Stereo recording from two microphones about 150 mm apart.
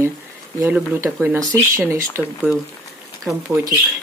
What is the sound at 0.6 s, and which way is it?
Speech, 15° right (ahead or behind).